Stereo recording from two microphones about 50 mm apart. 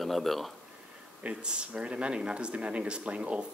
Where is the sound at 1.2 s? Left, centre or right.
Right.